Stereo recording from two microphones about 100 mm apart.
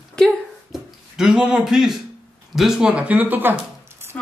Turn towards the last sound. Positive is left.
turn(degrees=-20)  # may be behind; listen again after turning